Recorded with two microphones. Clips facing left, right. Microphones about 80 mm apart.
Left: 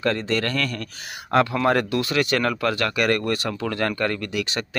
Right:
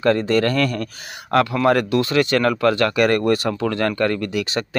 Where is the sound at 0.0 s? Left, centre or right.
Centre.